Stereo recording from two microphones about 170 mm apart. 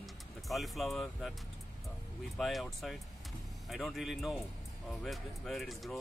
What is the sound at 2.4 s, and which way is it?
Speech, centre (ahead or behind).